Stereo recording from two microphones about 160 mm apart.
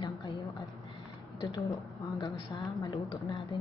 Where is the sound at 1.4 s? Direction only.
25° left (ahead or behind).